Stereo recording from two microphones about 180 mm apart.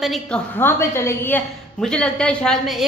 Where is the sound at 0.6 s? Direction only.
15° left (ahead or behind).